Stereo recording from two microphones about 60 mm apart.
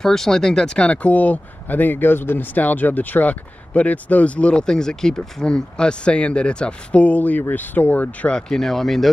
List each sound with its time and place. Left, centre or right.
0.0 s speech: centre; by 8.3 s left
8.3 s speech: centre